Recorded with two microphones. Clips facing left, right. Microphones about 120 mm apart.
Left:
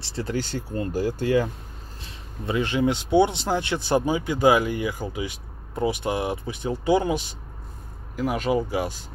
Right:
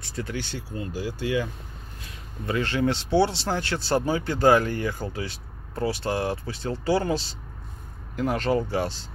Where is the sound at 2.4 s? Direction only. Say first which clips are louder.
Left 2 dB; 15° left (ahead or behind).